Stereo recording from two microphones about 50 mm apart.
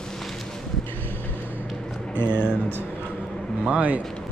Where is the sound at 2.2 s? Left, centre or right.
Left.